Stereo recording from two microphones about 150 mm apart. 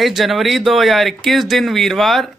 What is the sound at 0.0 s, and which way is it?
A woman's voice, centre (ahead or behind).